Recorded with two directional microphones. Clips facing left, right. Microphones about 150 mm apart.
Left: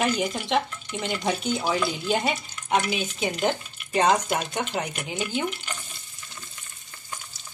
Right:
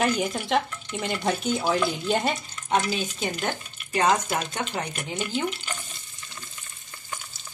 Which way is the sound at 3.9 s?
25° left (ahead or behind).